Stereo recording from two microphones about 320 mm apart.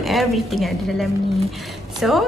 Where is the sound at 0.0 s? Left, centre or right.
Centre.